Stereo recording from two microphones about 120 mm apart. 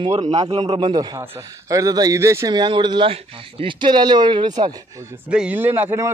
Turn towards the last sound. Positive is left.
turn(degrees=-20)  # may be behind; listen again after turning